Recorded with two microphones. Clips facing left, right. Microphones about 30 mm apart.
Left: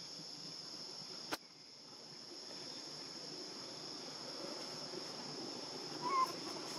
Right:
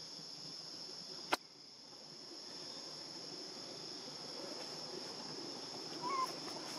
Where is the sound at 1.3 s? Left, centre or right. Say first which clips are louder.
Right 7 dB; right.